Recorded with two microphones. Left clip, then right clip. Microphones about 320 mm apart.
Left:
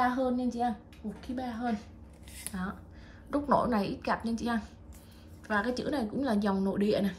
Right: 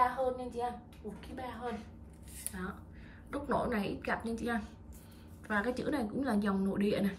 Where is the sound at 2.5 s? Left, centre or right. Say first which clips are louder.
Left 4 dB; right.